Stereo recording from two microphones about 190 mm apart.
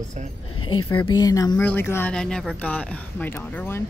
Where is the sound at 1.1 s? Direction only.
20° left (ahead or behind).